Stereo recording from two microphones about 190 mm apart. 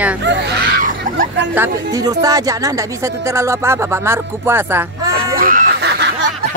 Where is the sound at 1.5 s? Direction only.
15° right (ahead or behind).